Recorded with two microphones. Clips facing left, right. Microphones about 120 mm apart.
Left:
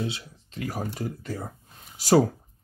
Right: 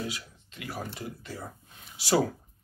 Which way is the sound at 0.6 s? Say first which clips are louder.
Left 6 dB; 45° left (ahead or behind).